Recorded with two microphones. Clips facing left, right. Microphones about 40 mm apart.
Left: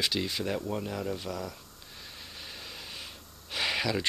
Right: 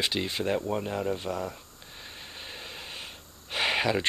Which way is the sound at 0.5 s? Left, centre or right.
Centre.